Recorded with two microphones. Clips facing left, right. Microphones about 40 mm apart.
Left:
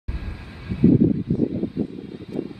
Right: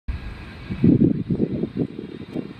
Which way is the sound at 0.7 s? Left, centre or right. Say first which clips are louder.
Even; centre.